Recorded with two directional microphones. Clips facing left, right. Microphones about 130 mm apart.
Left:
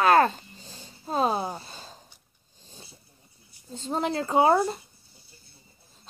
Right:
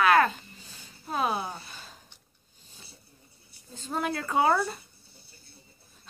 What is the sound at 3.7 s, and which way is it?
Speech, 25° left (ahead or behind).